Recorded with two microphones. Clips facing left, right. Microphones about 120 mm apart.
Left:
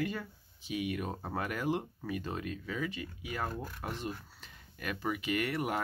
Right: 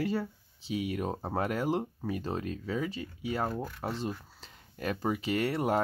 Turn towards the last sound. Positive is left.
turn(degrees=-30)  # may be behind; listen again after turning